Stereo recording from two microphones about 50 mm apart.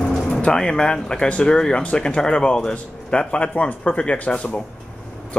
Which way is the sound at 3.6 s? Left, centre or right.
Left.